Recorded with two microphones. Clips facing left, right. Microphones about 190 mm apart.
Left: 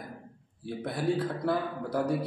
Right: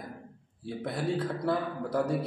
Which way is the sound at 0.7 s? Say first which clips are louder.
Left 2 dB; centre (ahead or behind).